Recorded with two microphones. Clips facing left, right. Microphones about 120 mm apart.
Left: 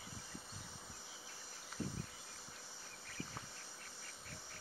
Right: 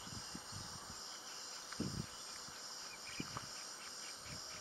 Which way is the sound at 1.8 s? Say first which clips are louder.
Even; 20° right (ahead or behind).